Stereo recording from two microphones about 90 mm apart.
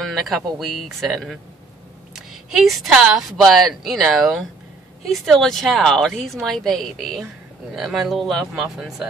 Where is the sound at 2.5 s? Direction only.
Centre (ahead or behind).